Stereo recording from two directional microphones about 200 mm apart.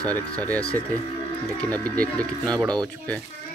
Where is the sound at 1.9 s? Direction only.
5° left (ahead or behind).